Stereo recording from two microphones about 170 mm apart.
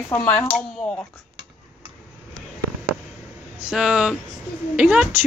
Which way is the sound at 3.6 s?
5° right (ahead or behind).